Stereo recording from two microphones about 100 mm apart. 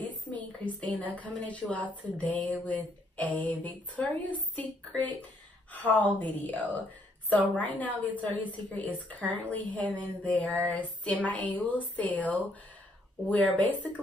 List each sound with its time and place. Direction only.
0.1 s a woman's voice: 15° left (ahead or behind)